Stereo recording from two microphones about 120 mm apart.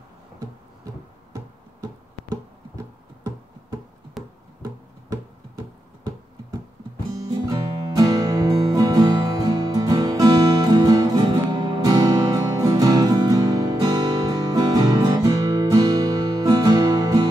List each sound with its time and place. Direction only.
1.3 s music: 30° right (ahead or behind)
4.2 s music: centre (ahead or behind)
7.4 s music: 30° right (ahead or behind)